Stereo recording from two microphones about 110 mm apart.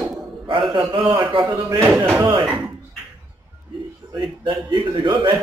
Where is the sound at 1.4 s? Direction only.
20° right (ahead or behind).